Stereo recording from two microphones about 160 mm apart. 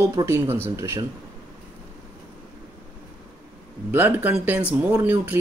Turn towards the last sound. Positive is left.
turn(degrees=-15)  # may be behind; listen again after turning